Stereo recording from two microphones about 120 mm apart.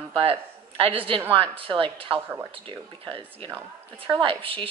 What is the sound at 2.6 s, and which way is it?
Speech, 45° right (ahead or behind).